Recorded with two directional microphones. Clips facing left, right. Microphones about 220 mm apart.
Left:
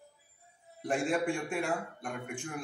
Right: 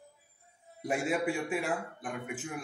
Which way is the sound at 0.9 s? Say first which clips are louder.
Even; 5° right (ahead or behind).